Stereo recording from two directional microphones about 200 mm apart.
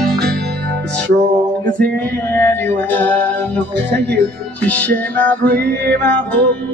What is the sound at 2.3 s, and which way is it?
Music, 10° left (ahead or behind).